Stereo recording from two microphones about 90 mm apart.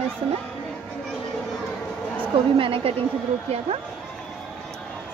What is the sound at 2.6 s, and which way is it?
Speech, 90° right.